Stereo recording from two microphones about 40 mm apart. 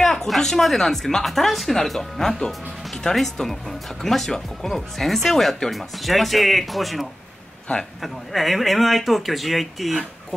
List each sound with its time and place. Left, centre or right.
0.0 s a sound: centre
0.3 s speech: centre
7.7 s a man's voice: left
8.0 s speech: centre